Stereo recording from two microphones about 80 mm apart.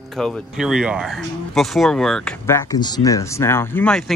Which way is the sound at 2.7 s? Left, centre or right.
Left.